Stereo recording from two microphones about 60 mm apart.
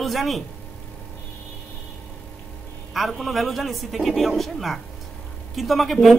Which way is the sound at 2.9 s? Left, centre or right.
Centre.